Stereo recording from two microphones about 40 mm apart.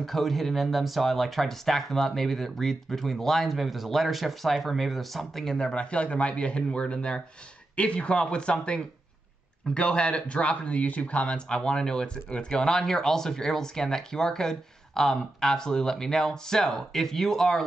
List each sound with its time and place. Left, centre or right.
0.0 s speech: centre